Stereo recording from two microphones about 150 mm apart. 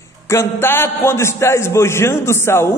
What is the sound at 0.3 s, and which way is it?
A man's voice, 15° left (ahead or behind).